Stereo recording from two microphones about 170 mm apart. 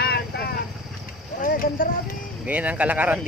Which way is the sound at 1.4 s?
55° left (ahead or behind).